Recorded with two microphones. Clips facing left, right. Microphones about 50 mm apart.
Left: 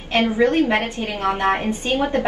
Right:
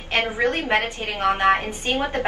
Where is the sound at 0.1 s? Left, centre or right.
Right.